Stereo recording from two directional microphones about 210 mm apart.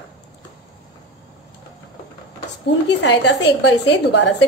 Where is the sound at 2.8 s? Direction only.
55° left (ahead or behind).